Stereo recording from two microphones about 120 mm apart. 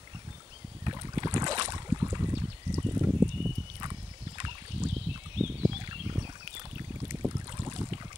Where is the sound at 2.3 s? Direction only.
25° right (ahead or behind).